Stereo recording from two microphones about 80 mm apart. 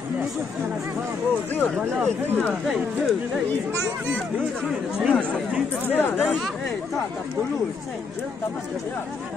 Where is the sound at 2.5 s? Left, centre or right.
Centre.